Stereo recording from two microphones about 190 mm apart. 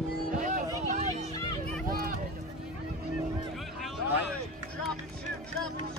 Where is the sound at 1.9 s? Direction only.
50° right (ahead or behind).